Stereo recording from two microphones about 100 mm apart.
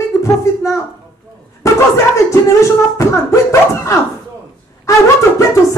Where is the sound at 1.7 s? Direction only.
30° left (ahead or behind).